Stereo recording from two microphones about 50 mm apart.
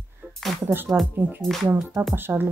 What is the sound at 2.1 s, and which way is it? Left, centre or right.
Speech, right.